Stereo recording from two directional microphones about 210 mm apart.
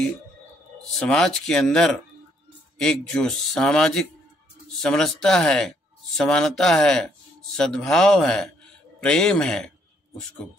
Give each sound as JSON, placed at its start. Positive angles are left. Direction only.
{"t": 0.9, "sound": "speech", "side_deg": 5}